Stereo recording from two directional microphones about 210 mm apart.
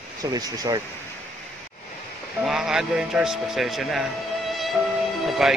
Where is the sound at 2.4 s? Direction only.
Centre (ahead or behind).